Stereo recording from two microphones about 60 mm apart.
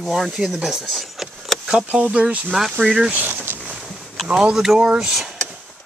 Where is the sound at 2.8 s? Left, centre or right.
Right.